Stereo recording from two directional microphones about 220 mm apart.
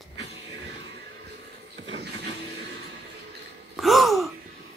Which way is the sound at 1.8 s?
55° right (ahead or behind).